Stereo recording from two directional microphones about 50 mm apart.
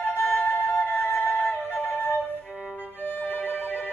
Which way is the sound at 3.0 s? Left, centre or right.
Left.